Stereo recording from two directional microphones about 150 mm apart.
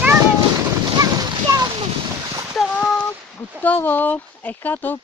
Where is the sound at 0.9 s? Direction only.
25° right (ahead or behind).